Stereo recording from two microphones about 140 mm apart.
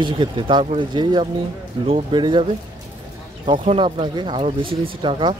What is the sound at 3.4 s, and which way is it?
Speech, 40° right (ahead or behind).